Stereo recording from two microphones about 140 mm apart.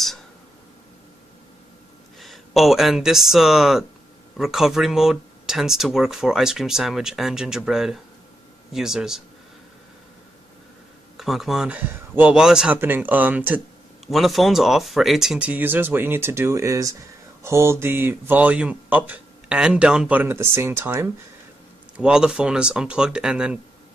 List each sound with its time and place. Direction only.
2.1 s speech: centre (ahead or behind)
11.1 s speech: centre (ahead or behind)
14.0 s speech: centre (ahead or behind); by 21.1 s 20° right (ahead or behind)
21.9 s speech: 5° right (ahead or behind)